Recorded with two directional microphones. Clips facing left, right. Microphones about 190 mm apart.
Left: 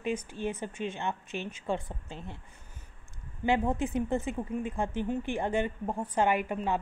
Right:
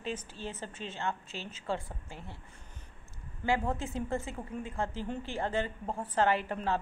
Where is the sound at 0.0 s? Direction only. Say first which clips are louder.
Left 6 dB; 15° left (ahead or behind).